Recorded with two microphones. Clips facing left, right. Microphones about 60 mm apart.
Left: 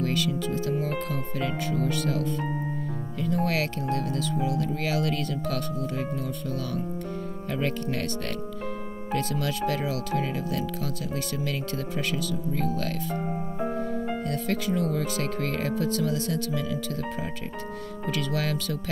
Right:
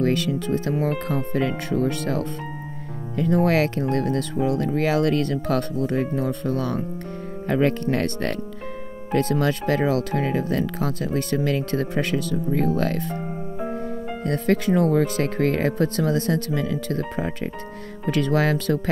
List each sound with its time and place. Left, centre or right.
0.0 s speech: right
13.6 s music: centre
14.2 s speech: right